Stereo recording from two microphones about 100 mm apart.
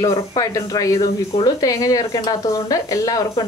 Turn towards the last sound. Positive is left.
turn(degrees=35)  # may be behind; listen again after turning